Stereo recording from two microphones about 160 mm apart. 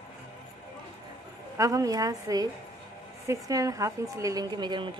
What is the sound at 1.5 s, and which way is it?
A woman's voice, 20° right (ahead or behind).